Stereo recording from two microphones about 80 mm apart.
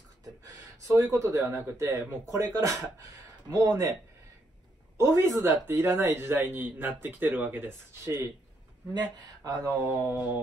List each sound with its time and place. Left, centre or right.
0.2 s gasp: right
1.4 s speech: right
4.9 s speech: right
8.9 s speech: right
9.8 s speech: right